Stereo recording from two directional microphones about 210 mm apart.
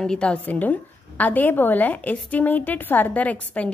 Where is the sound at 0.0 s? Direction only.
5° left (ahead or behind).